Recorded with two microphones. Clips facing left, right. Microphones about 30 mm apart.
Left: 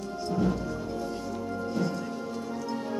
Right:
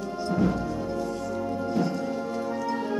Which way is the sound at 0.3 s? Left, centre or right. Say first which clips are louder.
Right 3 dB; centre.